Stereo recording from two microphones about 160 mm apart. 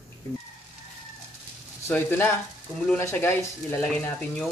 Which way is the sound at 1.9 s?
10° left (ahead or behind).